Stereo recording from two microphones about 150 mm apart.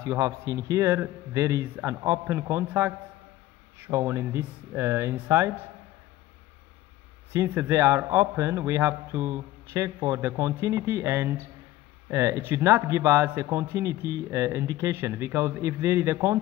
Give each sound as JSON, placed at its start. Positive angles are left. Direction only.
{"t": 0.0, "sound": "a man's voice", "side_deg": -20}
{"t": 7.3, "sound": "a man's voice", "side_deg": -15}